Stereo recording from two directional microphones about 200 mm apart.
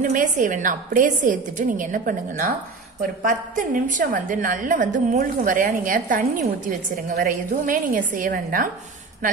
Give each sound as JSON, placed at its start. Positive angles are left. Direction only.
{"t": 0.0, "sound": "a woman's voice", "side_deg": -40}